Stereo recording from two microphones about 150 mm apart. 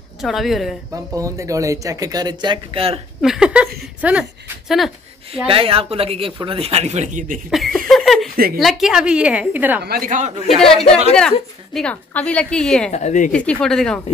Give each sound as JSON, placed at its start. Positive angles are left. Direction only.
{"t": 0.2, "sound": "a woman's voice", "side_deg": 0}
{"t": 1.1, "sound": "speech", "side_deg": -20}
{"t": 3.2, "sound": "a woman's voice", "side_deg": -5}
{"t": 5.5, "sound": "speech", "side_deg": -35}
{"t": 7.5, "sound": "laughter", "side_deg": 0}
{"t": 8.5, "sound": "a woman's voice", "side_deg": 0}
{"t": 9.8, "sound": "speech", "side_deg": -70}
{"t": 10.6, "sound": "a woman's voice", "side_deg": 5}
{"t": 12.9, "sound": "speech", "side_deg": 55}
{"t": 13.3, "sound": "a woman's voice", "side_deg": 5}